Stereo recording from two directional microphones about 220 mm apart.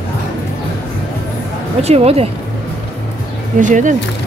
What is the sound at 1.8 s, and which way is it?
Speech, 25° right (ahead or behind).